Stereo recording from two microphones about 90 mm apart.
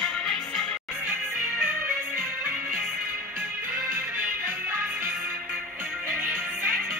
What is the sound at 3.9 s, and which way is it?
Music, 25° right (ahead or behind).